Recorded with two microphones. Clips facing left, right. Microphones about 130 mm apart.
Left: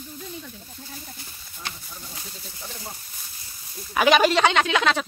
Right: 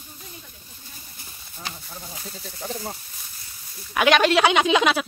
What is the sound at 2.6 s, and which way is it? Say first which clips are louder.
Speech: right 9 dB; 50° right (ahead or behind).